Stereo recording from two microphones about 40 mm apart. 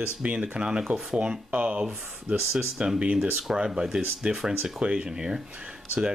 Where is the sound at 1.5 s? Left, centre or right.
Right.